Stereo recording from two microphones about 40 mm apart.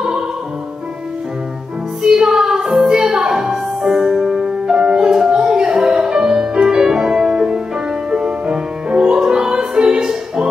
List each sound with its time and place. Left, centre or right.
2.0 s music: centre